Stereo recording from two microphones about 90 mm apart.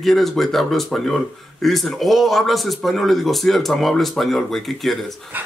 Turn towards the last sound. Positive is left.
turn(degrees=0)  # may be behind; listen again after turning